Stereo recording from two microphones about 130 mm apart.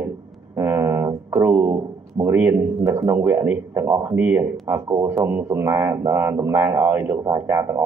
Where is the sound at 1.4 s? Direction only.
15° right (ahead or behind).